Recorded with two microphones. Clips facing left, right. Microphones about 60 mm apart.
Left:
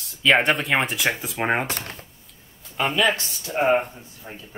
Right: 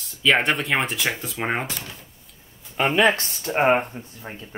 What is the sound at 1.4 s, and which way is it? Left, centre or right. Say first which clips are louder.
Speech: left 3 dB; left.